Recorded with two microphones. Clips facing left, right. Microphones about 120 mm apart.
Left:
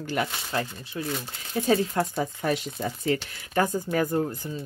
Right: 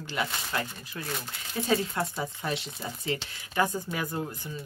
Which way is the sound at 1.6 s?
40° left (ahead or behind).